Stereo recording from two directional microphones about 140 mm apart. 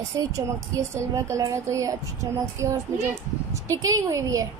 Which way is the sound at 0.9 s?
20° right (ahead or behind).